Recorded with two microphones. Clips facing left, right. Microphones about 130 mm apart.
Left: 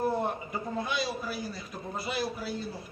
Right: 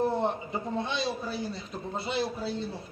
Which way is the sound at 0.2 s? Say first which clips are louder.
Right 2 dB; 25° right (ahead or behind).